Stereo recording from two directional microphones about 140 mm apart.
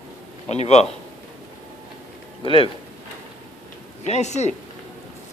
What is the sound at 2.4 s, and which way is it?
Speech, 40° left (ahead or behind).